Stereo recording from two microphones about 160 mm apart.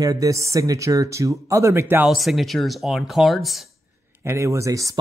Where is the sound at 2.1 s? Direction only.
Centre (ahead or behind).